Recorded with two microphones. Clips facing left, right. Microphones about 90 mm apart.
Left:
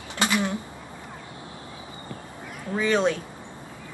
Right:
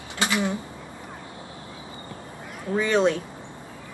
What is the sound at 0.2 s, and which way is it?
Speech, 20° right (ahead or behind).